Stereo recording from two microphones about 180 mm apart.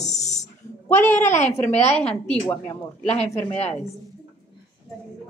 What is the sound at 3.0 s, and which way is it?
Speech, 40° left (ahead or behind).